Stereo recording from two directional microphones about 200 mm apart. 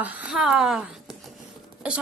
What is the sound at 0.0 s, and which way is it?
A woman's voice, 10° right (ahead or behind).